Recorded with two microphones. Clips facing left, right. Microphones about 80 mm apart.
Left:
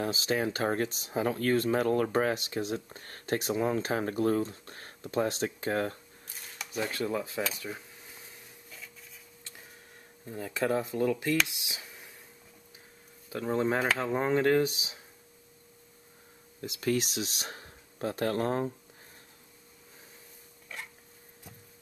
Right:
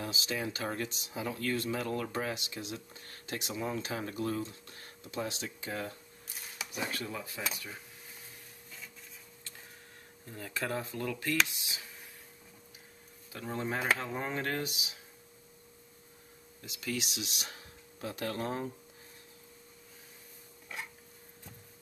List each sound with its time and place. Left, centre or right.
0.0 s speech: left
6.3 s a sound: centre
6.9 s speech: left
7.5 s dishes: left
10.2 s speech: centre
13.3 s speech: left
16.6 s speech: left